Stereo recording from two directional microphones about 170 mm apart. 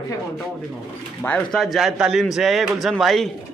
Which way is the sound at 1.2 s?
5° left (ahead or behind).